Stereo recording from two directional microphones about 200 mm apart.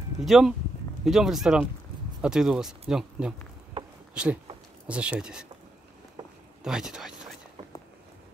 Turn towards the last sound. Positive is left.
turn(degrees=0)  # may be behind; listen again after turning